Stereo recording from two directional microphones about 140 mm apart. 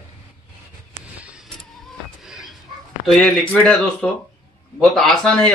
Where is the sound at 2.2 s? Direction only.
5° right (ahead or behind).